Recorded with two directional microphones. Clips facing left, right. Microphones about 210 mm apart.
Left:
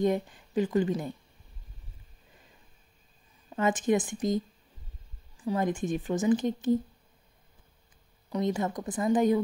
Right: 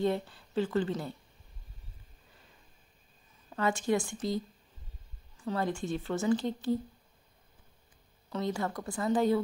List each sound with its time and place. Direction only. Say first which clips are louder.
0.0 s speech: left 3 dB; 15° left (ahead or behind)
3.5 s speech: left 3 dB; 20° left (ahead or behind)
5.4 s speech: left 4 dB; 15° left (ahead or behind)
8.3 s speech: left 4 dB; 15° left (ahead or behind)